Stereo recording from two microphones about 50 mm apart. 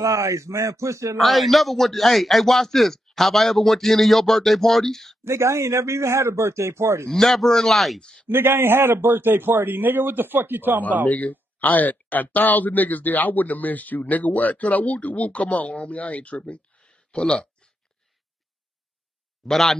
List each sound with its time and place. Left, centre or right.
0.0 s a man's voice: right
1.1 s a man's voice: centre
5.2 s a man's voice: right
7.1 s a man's voice: centre
8.0 s speech: centre
8.3 s a man's voice: right
11.1 s speech: left
19.4 s a man's voice: centre